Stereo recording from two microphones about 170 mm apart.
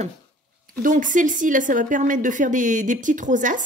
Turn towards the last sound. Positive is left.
turn(degrees=-50)  # may be behind; listen again after turning